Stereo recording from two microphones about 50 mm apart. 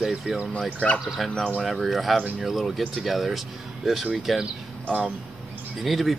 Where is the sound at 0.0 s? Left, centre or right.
Centre.